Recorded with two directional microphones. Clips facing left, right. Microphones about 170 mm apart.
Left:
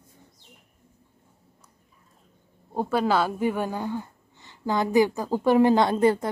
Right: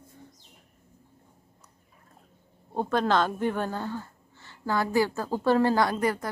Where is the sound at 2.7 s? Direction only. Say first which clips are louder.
Left 1 dB; 10° left (ahead or behind).